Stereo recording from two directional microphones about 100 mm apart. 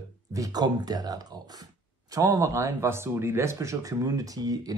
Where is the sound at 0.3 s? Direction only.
40° right (ahead or behind).